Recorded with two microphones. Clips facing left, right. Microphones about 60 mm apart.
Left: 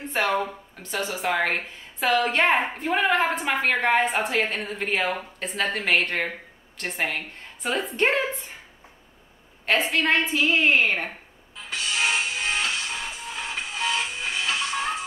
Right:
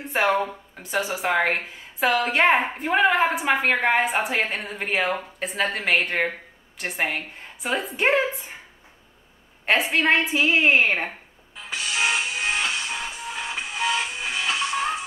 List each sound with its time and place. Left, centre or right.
0.4 s speech: centre
9.7 s speech: centre
12.1 s music: centre